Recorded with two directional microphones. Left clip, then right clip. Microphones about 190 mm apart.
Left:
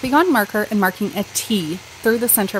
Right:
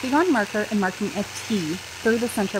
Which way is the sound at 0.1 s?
15° left (ahead or behind).